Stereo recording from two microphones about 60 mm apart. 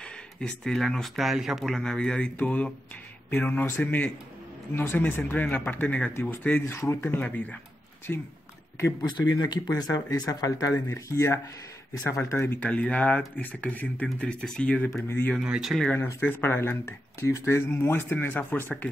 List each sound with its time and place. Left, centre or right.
0.4 s speech: centre
1.1 s speech: centre
1.8 s speech: centre; by 6.6 s left
6.7 s speech: left
7.2 s speech: left
9.2 s speech: left
10.9 s speech: left
12.4 s speech: left
12.6 s speech: left
14.9 s speech: left
15.7 s speech: centre
16.2 s speech: left